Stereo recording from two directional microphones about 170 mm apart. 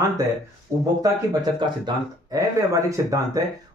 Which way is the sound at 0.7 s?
15° right (ahead or behind).